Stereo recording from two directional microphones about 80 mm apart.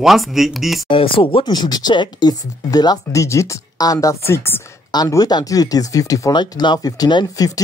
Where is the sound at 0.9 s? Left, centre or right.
Left.